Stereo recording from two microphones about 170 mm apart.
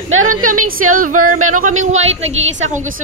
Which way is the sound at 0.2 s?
50° right (ahead or behind).